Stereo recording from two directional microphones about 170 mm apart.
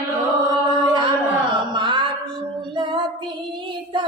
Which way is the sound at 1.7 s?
25° right (ahead or behind).